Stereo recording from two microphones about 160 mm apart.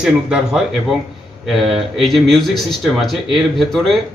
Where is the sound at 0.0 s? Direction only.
5° right (ahead or behind).